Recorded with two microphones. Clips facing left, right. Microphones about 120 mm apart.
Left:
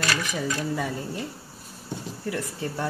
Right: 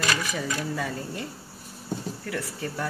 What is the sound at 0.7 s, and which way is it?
Speech, 15° left (ahead or behind).